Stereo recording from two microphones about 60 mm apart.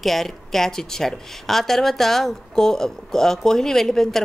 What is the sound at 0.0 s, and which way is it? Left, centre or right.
Speech, centre.